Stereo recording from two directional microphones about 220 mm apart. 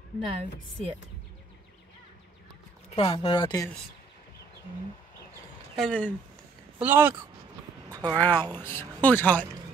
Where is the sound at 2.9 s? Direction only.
25° left (ahead or behind).